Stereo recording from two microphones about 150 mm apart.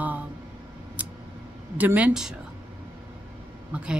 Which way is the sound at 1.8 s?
10° right (ahead or behind).